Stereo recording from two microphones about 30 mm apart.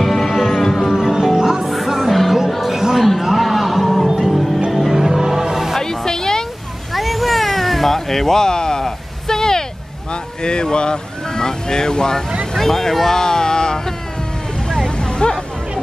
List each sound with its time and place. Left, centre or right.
0.0 s music: centre
0.3 s music: centre
0.6 s music: centre
0.8 s music: centre
1.7 s music: centre
2.7 s music: centre
5.0 s music: centre
5.8 s music: centre
6.9 s cat: centre
10.4 s boat: left
12.5 s a sound: centre
14.7 s vehicle: left